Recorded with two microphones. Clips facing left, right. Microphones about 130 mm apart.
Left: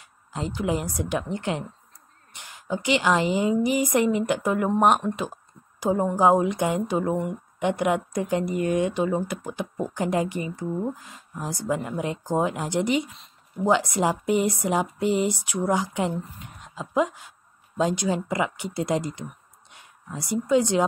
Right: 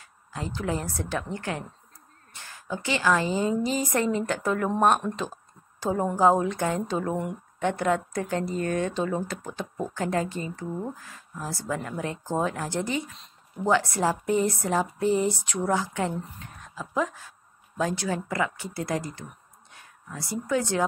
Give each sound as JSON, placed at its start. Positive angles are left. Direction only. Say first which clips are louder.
{"t": 0.0, "sound": "a woman's voice", "louder": "left 4 dB", "side_deg": 20}